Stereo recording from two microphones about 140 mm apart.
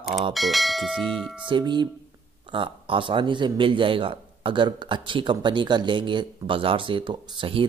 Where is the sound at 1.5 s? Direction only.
35° right (ahead or behind).